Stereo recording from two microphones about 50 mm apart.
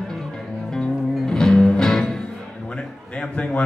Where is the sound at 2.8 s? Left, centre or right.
Centre.